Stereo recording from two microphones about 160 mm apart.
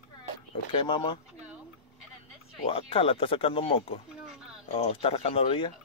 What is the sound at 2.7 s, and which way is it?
Speech, 35° left (ahead or behind).